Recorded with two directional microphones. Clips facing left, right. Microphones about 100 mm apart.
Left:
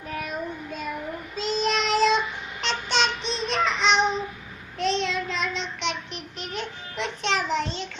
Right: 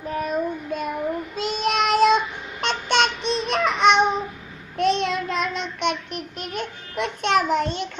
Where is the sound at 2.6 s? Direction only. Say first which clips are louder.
Right 4 dB; 55° right (ahead or behind).